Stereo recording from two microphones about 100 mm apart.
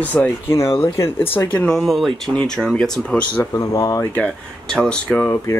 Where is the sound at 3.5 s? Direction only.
35° left (ahead or behind).